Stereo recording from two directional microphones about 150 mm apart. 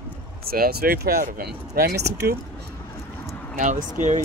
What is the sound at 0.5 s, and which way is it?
Speech, 85° right.